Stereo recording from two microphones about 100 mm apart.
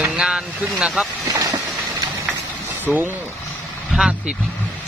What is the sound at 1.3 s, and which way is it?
Vehicle, 35° right (ahead or behind).